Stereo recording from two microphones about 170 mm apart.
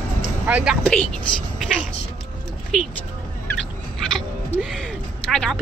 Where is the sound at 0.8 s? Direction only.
5° left (ahead or behind).